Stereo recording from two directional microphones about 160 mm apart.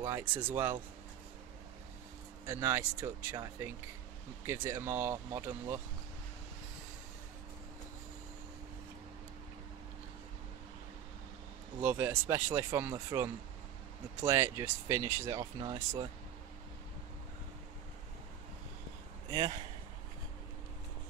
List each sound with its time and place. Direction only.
0.0 s speech: 10° right (ahead or behind)
2.4 s speech: 15° right (ahead or behind)
4.5 s speech: 15° right (ahead or behind)
11.8 s speech: 10° right (ahead or behind)
19.3 s speech: 25° right (ahead or behind)